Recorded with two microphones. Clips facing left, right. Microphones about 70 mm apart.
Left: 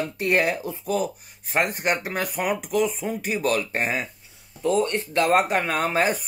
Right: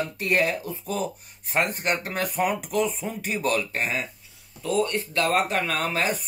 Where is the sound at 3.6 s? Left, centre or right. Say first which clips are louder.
Left 2 dB; left.